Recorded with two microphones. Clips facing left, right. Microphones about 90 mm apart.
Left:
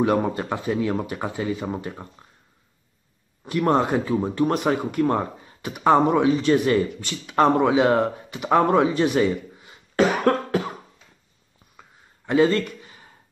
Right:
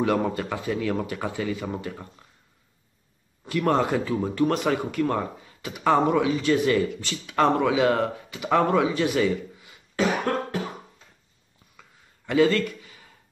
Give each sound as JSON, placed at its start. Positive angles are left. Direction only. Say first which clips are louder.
{"t": 0.0, "sound": "speech", "louder": "left 2 dB", "side_deg": 20}
{"t": 3.4, "sound": "speech", "louder": "left 2 dB", "side_deg": 25}
{"t": 8.7, "sound": "speech", "louder": "left 3 dB", "side_deg": 35}
{"t": 9.9, "sound": "cough", "louder": "left 5 dB", "side_deg": 65}
{"t": 12.3, "sound": "speech", "louder": "left 2 dB", "side_deg": 30}